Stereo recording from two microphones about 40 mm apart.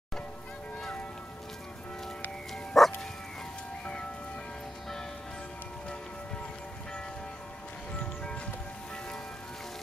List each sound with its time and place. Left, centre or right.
2.7 s music: centre